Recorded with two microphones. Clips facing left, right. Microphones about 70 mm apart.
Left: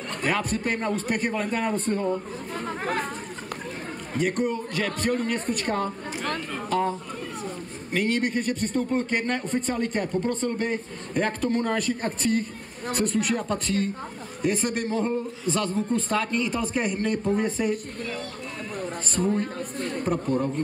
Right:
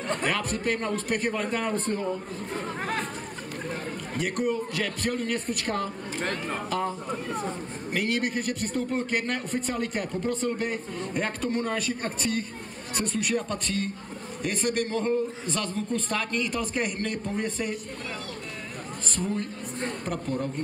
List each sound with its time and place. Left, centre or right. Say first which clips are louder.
0.2 s a man's voice: left 2 dB; centre
4.2 s a man's voice: left 2 dB; centre
7.9 s a man's voice: left 3 dB; centre
19.2 s speech: left 6 dB; left
20.1 s a man's voice: left 9 dB; centre